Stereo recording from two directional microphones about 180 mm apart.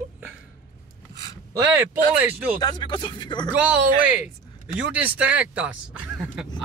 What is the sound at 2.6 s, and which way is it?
Speech, 25° left (ahead or behind).